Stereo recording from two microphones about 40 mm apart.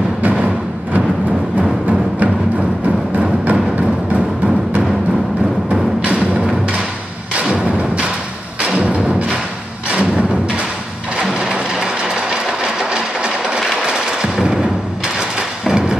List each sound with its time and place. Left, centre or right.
0.2 s music: right
5.7 s music: right
7.5 s thump: right
8.6 s music: right
9.8 s thump: right
11.1 s sewing machine: centre
11.8 s train: centre
13.8 s a sound: right
15.1 s music: centre